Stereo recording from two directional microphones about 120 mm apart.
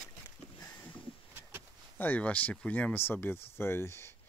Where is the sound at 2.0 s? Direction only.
15° left (ahead or behind).